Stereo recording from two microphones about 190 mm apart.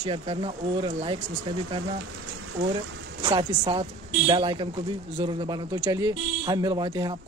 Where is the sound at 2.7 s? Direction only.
25° right (ahead or behind).